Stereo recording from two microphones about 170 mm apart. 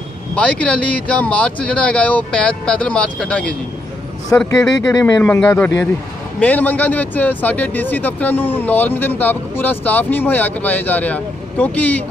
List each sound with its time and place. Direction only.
0.4 s speech: 5° left (ahead or behind)
4.5 s speech: 20° left (ahead or behind)